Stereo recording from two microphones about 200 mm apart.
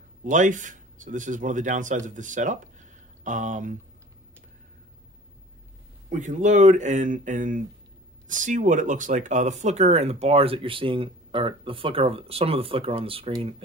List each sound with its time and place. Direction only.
0.2 s speech: 40° right (ahead or behind)
6.0 s speech: 40° right (ahead or behind)